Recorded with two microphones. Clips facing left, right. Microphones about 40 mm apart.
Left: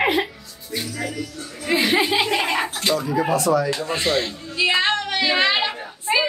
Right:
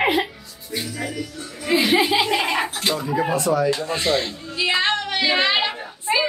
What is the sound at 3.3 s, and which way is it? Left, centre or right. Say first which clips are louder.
Speech: left 1 dB; right.